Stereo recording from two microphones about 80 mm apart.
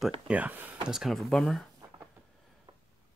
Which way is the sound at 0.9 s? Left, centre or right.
Centre.